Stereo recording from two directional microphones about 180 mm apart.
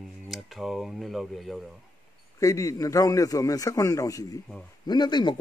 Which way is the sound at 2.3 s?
15° left (ahead or behind).